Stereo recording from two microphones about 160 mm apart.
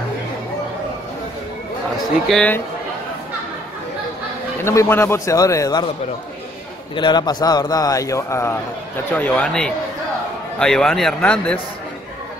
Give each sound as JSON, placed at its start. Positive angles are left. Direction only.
{"t": 2.2, "sound": "a man's voice", "side_deg": 5}
{"t": 4.6, "sound": "a man's voice", "side_deg": 15}
{"t": 7.0, "sound": "a man's voice", "side_deg": 25}